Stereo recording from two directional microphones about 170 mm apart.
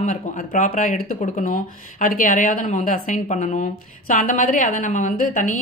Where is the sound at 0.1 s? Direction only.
50° left (ahead or behind).